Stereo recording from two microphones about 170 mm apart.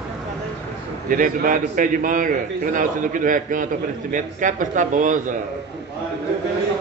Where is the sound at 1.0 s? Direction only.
55° right (ahead or behind).